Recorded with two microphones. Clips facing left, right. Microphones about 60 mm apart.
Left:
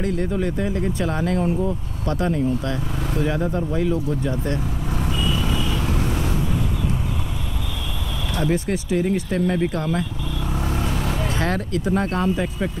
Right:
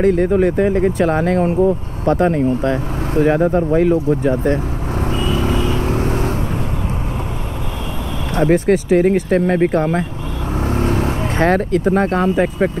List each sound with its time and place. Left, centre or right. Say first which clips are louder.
0.0 s speech: right 10 dB; right
5.1 s vehicle: right 6 dB; right
8.4 s speech: right 9 dB; right
10.5 s vehicle: right 9 dB; right